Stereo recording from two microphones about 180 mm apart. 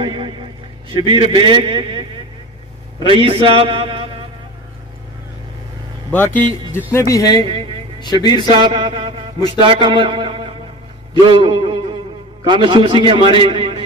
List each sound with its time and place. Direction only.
0.0 s a sound: 25° right (ahead or behind)
0.9 s a man's voice: 25° right (ahead or behind)
6.1 s speech: 10° left (ahead or behind)
7.3 s a man's voice: 30° right (ahead or behind)
8.0 s a man's voice: 25° left (ahead or behind)
8.4 s a man's voice: 25° right (ahead or behind)